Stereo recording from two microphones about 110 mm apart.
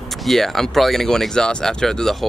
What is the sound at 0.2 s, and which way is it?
Speech, centre (ahead or behind).